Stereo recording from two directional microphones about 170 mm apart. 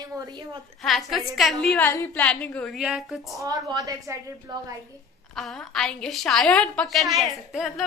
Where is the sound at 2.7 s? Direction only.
5° right (ahead or behind).